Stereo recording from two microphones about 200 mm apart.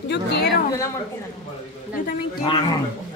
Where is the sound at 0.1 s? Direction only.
55° left (ahead or behind).